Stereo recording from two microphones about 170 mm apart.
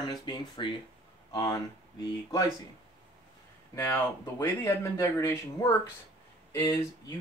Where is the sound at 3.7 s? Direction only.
15° left (ahead or behind).